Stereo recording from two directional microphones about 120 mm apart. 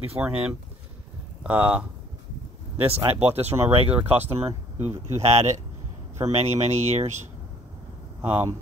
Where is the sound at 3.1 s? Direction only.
55° right (ahead or behind).